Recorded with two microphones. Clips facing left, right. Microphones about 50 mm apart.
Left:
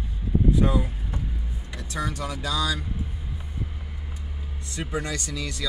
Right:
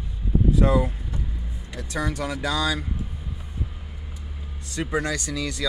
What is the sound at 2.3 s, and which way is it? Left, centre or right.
Speech, right.